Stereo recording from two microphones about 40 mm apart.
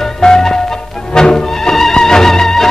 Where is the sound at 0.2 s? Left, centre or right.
Centre.